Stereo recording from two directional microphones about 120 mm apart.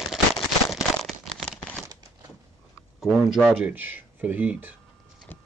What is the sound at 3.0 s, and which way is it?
Speech, 5° right (ahead or behind).